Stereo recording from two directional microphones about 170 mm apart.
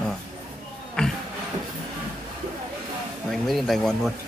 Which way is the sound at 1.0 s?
5° left (ahead or behind).